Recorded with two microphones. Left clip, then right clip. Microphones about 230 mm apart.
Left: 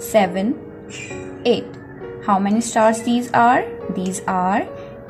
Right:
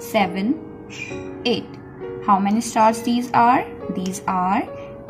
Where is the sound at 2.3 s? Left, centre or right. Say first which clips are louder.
Even; centre.